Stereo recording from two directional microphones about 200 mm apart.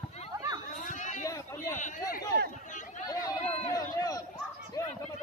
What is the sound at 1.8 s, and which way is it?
Speech, 40° left (ahead or behind).